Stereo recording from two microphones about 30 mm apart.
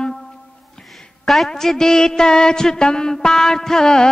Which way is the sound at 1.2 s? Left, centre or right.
Centre.